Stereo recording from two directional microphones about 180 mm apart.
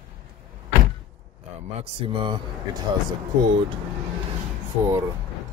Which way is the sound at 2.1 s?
25° right (ahead or behind).